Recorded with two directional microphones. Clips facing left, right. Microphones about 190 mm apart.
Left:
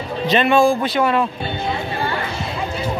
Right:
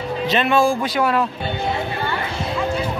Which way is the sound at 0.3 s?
5° right (ahead or behind).